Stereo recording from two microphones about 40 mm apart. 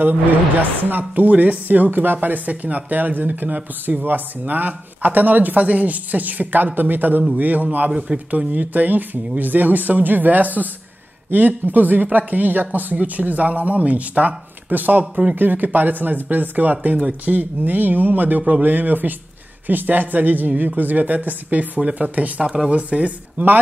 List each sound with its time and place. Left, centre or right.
0.0 s speech: right
2.1 s speech: right
21.7 s speech: right
22.4 s speech: centre
22.7 s speech: right
23.3 s speech: right